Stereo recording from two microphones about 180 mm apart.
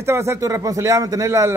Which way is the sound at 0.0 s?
15° right (ahead or behind).